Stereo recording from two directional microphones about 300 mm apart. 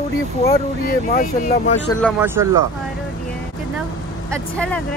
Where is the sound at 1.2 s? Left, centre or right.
Left.